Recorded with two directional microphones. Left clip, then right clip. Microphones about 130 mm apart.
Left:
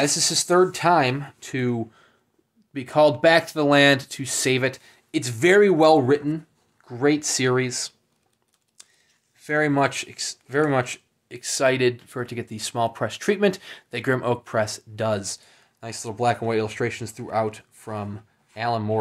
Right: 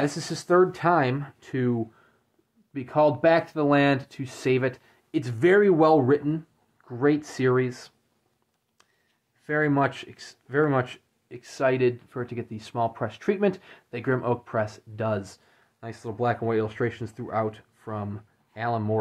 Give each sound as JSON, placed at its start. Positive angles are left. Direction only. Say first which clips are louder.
{"t": 0.0, "sound": "speech", "louder": "left 7 dB", "side_deg": 10}
{"t": 8.8, "sound": "a sound", "louder": "left 11 dB", "side_deg": 10}
{"t": 9.4, "sound": "speech", "louder": "left 3 dB", "side_deg": 15}